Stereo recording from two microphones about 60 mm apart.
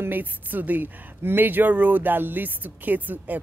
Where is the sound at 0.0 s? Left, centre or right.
Right.